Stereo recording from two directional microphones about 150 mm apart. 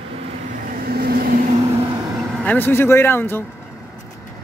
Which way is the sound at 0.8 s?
90° right.